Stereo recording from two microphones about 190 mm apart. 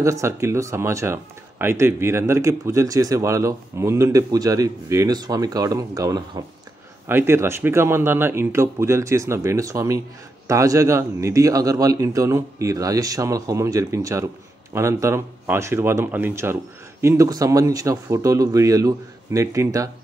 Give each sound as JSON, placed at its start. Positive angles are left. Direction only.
{"t": 0.0, "sound": "speech", "side_deg": -15}